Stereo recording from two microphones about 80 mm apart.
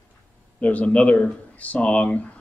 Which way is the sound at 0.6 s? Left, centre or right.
Centre.